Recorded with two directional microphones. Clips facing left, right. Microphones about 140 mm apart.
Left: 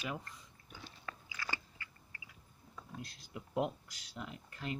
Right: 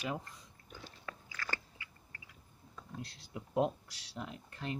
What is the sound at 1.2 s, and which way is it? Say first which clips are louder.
Biting: right 1 dB; 15° left (ahead or behind).